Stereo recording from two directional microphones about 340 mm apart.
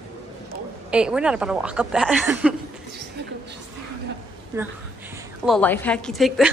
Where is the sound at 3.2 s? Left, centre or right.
Right.